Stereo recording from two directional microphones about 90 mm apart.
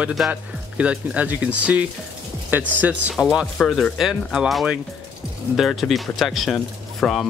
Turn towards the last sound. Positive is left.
turn(degrees=5)  # may be behind; listen again after turning